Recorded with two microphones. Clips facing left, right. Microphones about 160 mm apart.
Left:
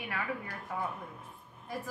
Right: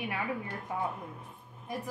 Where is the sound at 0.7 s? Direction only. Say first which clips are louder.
Right 2 dB; 20° right (ahead or behind).